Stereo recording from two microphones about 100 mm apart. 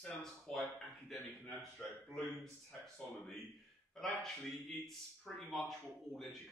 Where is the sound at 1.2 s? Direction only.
20° left (ahead or behind).